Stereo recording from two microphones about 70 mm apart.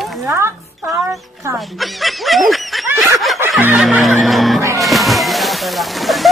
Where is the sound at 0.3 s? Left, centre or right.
Right.